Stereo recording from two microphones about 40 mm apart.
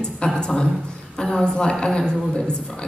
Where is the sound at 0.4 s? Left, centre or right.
Left.